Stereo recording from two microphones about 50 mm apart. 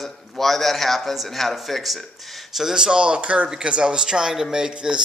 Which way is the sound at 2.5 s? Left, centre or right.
Centre.